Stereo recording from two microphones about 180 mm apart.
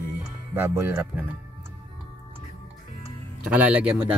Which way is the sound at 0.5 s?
15° right (ahead or behind).